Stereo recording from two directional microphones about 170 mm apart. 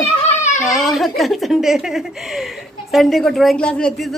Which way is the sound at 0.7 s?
Centre (ahead or behind).